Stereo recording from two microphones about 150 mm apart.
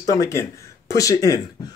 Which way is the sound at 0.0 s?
25° left (ahead or behind).